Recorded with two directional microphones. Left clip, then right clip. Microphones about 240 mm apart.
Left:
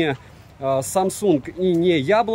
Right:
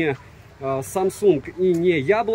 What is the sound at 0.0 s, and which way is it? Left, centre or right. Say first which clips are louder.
Speech: left 1 dB; centre.